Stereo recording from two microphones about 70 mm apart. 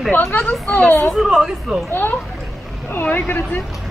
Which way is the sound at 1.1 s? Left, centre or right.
Centre.